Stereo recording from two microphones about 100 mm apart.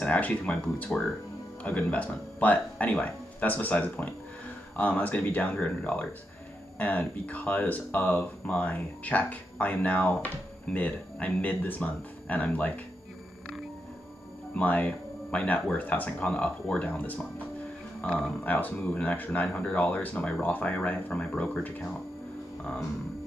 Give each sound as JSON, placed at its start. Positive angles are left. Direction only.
{"t": 0.0, "sound": "speech", "side_deg": 15}
{"t": 14.5, "sound": "speech", "side_deg": 15}
{"t": 18.4, "sound": "speech", "side_deg": 15}